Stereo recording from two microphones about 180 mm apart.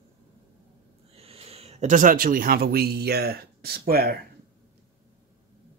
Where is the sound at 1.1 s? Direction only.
35° right (ahead or behind); by 4.2 s 55° right (ahead or behind).